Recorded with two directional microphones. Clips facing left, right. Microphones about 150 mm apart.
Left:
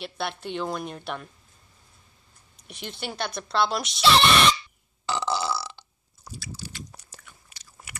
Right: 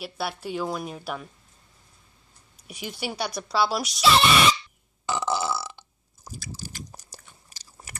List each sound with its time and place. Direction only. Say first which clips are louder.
0.0 s a woman's voice: even; 5° right (ahead or behind)
2.5 s speech: right 2 dB; 10° right (ahead or behind)
5.0 s burping: right 1 dB; 20° right (ahead or behind)
6.3 s biting: even; 45° right (ahead or behind)
6.9 s biting: right 2 dB; 35° right (ahead or behind)